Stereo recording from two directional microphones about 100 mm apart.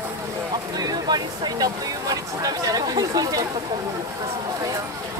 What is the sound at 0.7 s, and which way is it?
Speech, 40° right (ahead or behind).